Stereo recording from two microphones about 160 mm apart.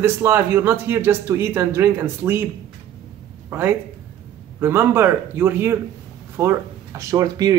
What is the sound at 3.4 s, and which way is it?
A man's voice, 15° right (ahead or behind).